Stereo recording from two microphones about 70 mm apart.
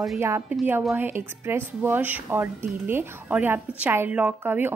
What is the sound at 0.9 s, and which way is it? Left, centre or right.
Speech, right.